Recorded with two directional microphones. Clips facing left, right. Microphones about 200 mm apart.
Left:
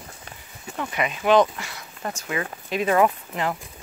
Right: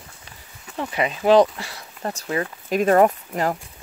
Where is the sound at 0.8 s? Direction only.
30° right (ahead or behind).